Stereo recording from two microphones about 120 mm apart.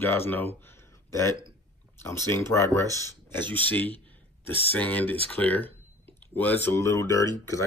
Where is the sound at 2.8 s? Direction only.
30° right (ahead or behind).